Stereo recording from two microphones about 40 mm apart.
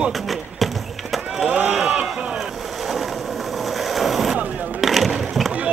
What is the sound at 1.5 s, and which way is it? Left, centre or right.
Run, right.